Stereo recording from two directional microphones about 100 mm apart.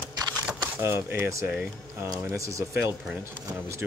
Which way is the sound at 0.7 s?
25° right (ahead or behind).